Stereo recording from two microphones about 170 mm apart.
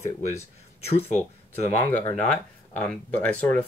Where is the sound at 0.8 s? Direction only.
35° left (ahead or behind).